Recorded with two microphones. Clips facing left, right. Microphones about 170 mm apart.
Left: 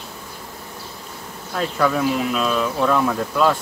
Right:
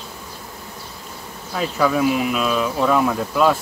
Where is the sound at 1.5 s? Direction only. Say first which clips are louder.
Right 1 dB; 5° right (ahead or behind).